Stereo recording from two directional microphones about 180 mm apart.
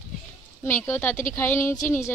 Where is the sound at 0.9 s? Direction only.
15° left (ahead or behind).